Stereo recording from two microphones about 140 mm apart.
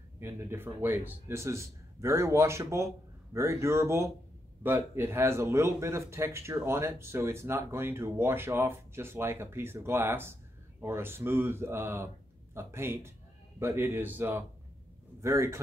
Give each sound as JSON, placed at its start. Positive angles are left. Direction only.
{"t": 0.2, "sound": "speech", "side_deg": -20}